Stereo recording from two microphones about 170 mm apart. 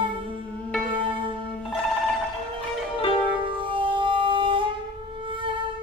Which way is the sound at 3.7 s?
30° right (ahead or behind).